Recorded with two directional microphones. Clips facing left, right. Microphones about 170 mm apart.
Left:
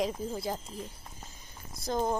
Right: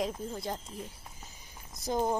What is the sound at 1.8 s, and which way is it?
Speech, 10° right (ahead or behind).